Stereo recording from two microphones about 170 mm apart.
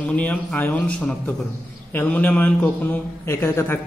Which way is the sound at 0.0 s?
10° left (ahead or behind).